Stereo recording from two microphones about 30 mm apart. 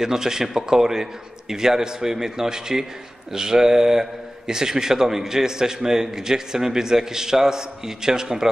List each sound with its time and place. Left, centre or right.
0.0 s a man's voice: centre